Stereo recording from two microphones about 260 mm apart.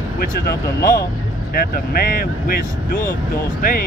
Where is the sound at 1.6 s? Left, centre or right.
Left.